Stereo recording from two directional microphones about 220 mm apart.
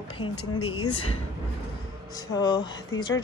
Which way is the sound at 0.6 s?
75° left (ahead or behind).